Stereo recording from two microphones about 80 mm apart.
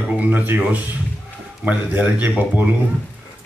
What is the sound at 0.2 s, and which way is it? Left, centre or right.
A man's voice, right.